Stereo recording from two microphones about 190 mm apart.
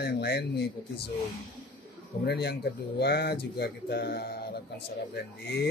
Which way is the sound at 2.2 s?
60° left (ahead or behind).